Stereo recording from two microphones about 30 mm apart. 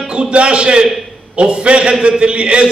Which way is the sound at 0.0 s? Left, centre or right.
Right.